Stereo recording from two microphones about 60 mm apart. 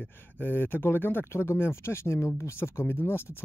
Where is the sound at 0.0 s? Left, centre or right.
Left.